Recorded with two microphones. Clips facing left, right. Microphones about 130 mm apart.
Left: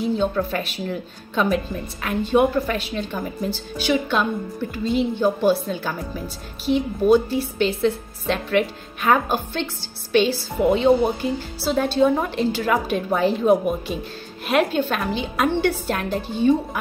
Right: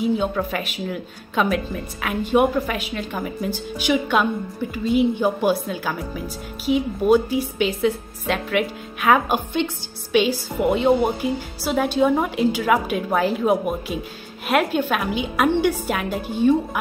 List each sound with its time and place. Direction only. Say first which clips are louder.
0.0 s a woman's voice: even; 10° right (ahead or behind)